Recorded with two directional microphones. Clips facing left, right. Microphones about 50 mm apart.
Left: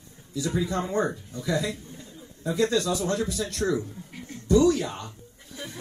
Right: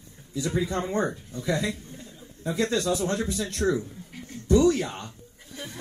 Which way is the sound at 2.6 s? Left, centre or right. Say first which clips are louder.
Left 1 dB; right.